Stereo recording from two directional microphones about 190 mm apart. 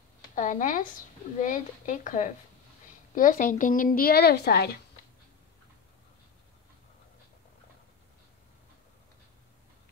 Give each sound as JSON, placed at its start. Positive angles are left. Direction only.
{"t": 0.3, "sound": "a woman's voice", "side_deg": 45}